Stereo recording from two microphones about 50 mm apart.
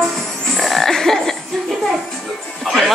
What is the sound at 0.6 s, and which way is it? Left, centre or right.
Frog, centre.